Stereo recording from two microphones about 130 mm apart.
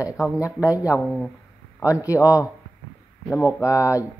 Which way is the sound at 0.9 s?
Centre (ahead or behind).